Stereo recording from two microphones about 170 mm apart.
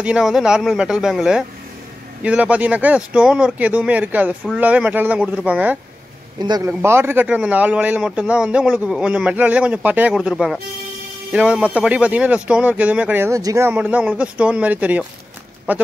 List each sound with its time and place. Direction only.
0.0 s a man's voice: 5° right (ahead or behind)
6.4 s a man's voice: 25° right (ahead or behind)
6.7 s a man's voice: 15° right (ahead or behind)